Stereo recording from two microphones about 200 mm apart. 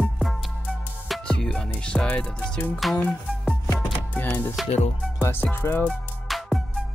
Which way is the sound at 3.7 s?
10° left (ahead or behind).